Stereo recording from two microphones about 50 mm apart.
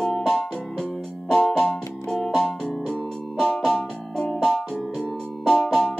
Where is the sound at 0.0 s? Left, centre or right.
Centre.